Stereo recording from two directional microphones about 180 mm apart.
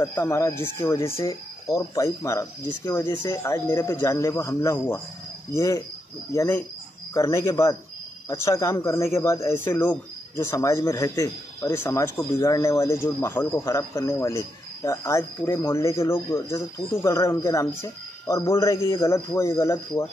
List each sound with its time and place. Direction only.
0.0 s speech: 15° left (ahead or behind)